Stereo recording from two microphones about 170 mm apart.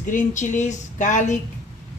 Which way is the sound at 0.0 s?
50° left (ahead or behind).